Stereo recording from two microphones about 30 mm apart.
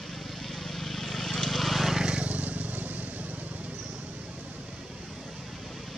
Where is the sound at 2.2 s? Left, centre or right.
Right.